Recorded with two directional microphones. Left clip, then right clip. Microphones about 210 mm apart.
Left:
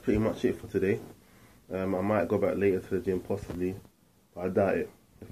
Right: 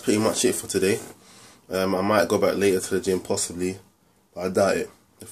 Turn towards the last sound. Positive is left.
turn(degrees=-20)  # may be behind; listen again after turning